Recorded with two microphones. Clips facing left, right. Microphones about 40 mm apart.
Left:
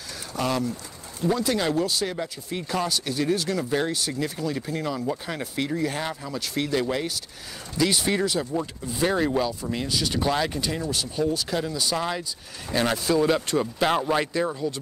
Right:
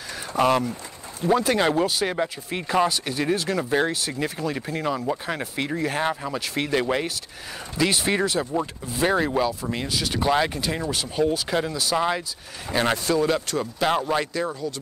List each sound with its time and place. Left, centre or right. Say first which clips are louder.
0.4 s speech: right 6 dB; right; by 13.0 s centre
13.0 s speech: even; centre